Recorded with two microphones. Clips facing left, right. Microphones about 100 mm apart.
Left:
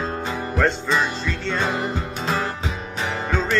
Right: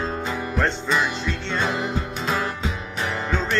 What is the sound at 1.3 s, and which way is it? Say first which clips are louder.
Speech: left 1 dB; centre (ahead or behind).